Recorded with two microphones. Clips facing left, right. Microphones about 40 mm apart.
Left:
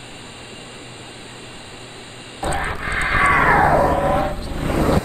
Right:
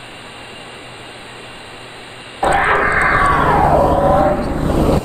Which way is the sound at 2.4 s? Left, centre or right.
Right.